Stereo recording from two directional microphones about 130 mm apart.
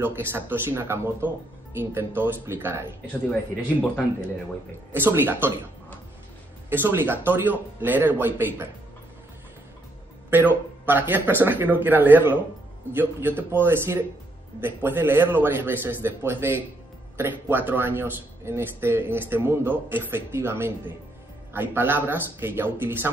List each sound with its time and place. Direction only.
0.0 s speech: 15° right (ahead or behind)
4.9 s speech: 15° right (ahead or behind)
6.7 s speech: 15° right (ahead or behind)
10.3 s speech: 15° right (ahead or behind)